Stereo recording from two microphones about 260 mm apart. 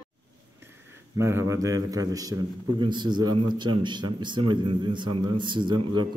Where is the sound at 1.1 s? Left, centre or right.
Centre.